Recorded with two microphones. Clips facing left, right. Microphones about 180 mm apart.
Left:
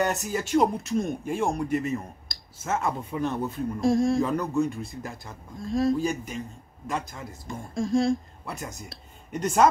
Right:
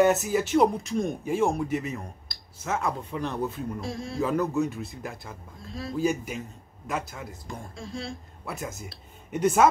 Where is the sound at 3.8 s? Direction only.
45° left (ahead or behind).